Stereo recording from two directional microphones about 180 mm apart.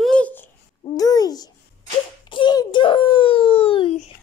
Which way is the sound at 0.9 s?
20° left (ahead or behind).